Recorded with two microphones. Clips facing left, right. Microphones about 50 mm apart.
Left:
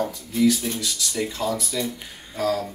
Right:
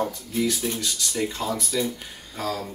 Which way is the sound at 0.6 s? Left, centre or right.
Centre.